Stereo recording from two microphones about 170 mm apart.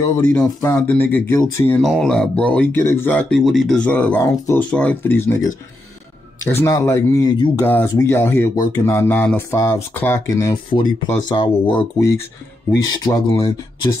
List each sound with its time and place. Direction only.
0.2 s speech: 10° left (ahead or behind)
1.8 s speech: centre (ahead or behind); by 13.9 s 20° left (ahead or behind)